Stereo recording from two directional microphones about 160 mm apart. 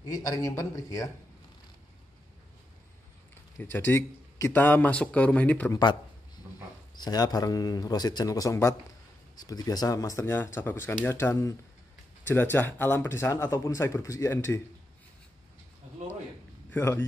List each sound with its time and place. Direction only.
0.1 s speech: 20° left (ahead or behind)
3.5 s speech: 15° left (ahead or behind)
7.0 s speech: 25° left (ahead or behind)
16.7 s speech: 15° left (ahead or behind)